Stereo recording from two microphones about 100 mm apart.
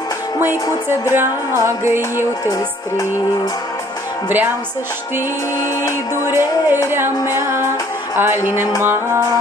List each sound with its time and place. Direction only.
0.4 s music: 20° right (ahead or behind)
6.2 s music: 25° right (ahead or behind)